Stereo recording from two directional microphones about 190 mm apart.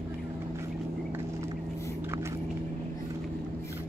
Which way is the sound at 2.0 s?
15° right (ahead or behind).